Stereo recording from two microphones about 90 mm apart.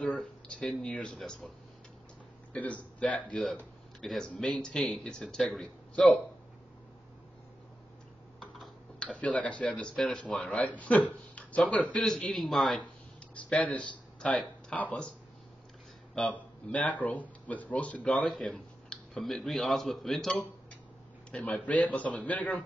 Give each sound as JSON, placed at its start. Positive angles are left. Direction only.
{"t": 0.0, "sound": "speech", "side_deg": 10}
{"t": 2.5, "sound": "a man's voice", "side_deg": 15}
{"t": 4.0, "sound": "speech", "side_deg": 5}
{"t": 8.4, "sound": "speech", "side_deg": 10}
{"t": 12.0, "sound": "speech", "side_deg": 5}
{"t": 12.8, "sound": "a sound", "side_deg": 15}
{"t": 14.7, "sound": "a man's voice", "side_deg": 10}
{"t": 16.2, "sound": "a man's voice", "side_deg": 15}